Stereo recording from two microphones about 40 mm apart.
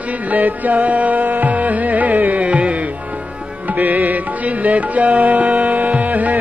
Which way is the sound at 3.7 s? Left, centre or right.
Right.